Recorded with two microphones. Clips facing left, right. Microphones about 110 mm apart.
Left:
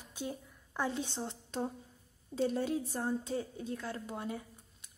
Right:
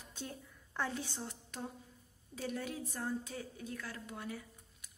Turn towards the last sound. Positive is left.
turn(degrees=25)  # may be behind; listen again after turning